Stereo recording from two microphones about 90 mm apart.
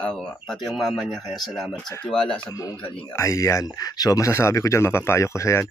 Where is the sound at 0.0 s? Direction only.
5° left (ahead or behind).